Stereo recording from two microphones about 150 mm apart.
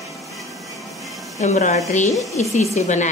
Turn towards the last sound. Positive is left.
turn(degrees=50)  # may be behind; listen again after turning